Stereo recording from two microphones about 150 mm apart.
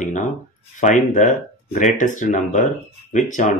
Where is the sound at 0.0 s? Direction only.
55° left (ahead or behind).